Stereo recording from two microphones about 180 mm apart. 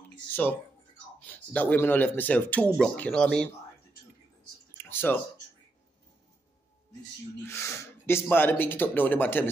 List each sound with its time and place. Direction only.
0.1 s speech: 10° left (ahead or behind)
4.8 s a sound: 10° left (ahead or behind)
7.4 s speech: 15° left (ahead or behind)